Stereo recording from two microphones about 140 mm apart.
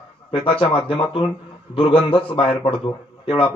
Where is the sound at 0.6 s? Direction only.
40° left (ahead or behind).